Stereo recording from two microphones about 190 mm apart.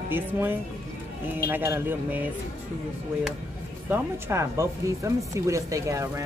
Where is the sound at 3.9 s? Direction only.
15° right (ahead or behind).